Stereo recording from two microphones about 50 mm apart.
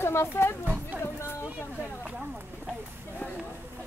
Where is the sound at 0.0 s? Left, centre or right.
Left.